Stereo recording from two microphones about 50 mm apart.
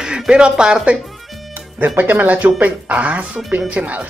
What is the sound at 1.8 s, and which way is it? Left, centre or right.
Speech, right.